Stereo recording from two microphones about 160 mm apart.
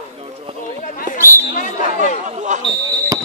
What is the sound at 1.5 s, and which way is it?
Speech, 50° left (ahead or behind).